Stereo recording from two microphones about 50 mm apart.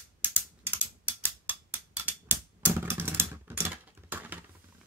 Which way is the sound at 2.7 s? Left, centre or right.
Right.